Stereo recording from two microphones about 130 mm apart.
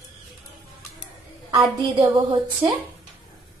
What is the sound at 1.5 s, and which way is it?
Speech, 40° right (ahead or behind).